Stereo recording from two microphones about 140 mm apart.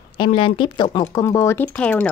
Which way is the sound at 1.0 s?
25° left (ahead or behind).